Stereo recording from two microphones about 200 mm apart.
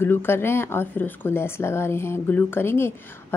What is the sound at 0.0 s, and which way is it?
Speech, 10° left (ahead or behind).